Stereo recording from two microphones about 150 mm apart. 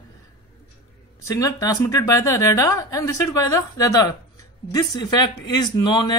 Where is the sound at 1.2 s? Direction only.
25° left (ahead or behind).